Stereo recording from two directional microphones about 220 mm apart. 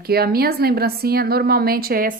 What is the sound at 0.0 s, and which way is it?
A woman's voice, 45° right (ahead or behind).